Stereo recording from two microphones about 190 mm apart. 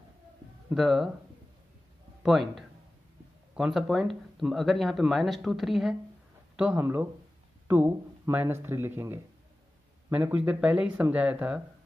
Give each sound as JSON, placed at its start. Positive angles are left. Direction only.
{"t": 0.7, "sound": "speech", "side_deg": 0}
{"t": 2.2, "sound": "speech", "side_deg": 0}